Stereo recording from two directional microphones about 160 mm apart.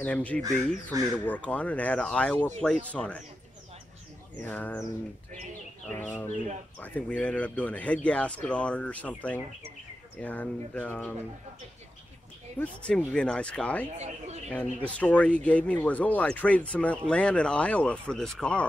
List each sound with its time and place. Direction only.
0.0 s speech: 10° left (ahead or behind)
4.4 s speech: 10° left (ahead or behind)
5.9 s speech: 10° left (ahead or behind)
12.5 s speech: 5° left (ahead or behind)
13.9 s speech: 45° right (ahead or behind)
14.5 s speech: 10° left (ahead or behind)